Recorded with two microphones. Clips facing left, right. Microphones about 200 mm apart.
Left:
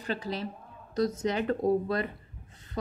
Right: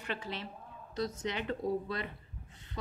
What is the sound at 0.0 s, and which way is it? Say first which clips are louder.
A woman's voice: left 7 dB; 35° left (ahead or behind).